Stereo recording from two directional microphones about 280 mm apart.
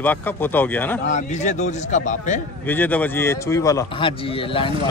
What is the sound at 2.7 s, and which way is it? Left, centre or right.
A man's voice, centre.